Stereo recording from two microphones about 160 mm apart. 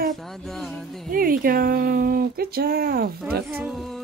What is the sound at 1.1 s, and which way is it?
Speech, 65° right (ahead or behind).